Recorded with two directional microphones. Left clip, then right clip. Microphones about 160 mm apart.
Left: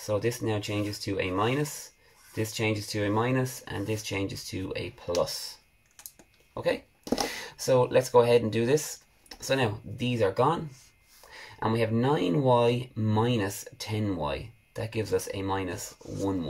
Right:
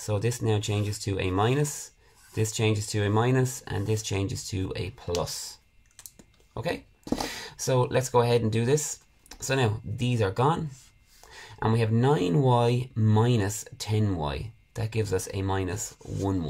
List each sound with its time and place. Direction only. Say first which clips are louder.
0.0 s speech: left 1 dB; 50° right (ahead or behind)
6.5 s speech: left 3 dB; 40° right (ahead or behind)